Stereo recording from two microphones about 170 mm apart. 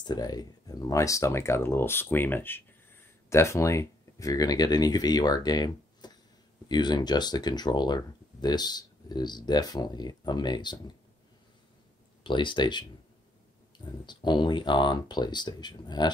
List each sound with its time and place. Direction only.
0.0 s speech: 25° left (ahead or behind)
12.2 s speech: 30° left (ahead or behind)
14.0 s speech: 25° left (ahead or behind)